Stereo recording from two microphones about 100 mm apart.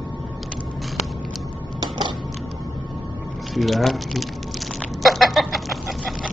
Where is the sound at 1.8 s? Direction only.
50° right (ahead or behind).